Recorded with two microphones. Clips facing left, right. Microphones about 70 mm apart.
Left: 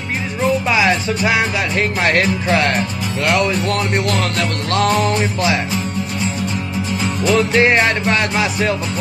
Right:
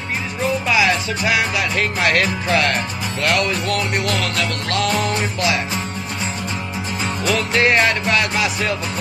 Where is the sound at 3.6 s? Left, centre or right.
Left.